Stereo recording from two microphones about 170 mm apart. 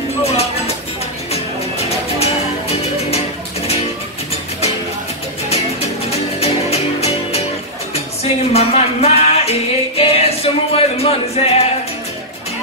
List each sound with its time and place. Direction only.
0.2 s music: 35° left (ahead or behind)
3.6 s music: 35° left (ahead or behind)
5.5 s music: 40° left (ahead or behind)